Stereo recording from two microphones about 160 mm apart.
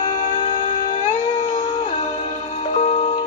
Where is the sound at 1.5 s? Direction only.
35° left (ahead or behind).